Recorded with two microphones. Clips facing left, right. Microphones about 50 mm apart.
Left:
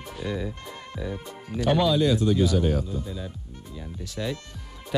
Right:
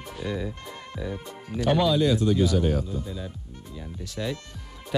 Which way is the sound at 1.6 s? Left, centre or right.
Centre.